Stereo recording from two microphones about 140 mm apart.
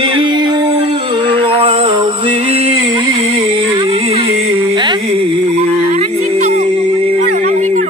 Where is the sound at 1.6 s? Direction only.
40° right (ahead or behind).